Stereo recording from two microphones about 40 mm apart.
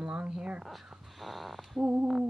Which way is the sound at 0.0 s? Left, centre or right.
Right.